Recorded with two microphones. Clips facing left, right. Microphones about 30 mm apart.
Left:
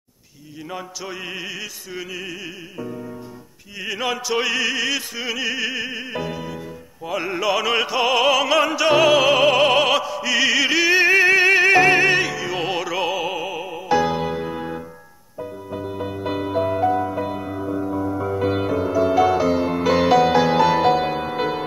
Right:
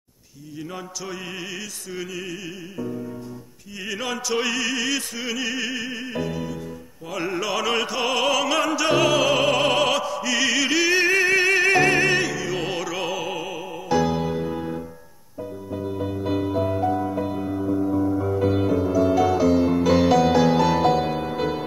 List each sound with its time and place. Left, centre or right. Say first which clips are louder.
0.7 s music: left 4 dB; centre
7.1 s opera: left 4 dB; centre
15.7 s music: right 1 dB; centre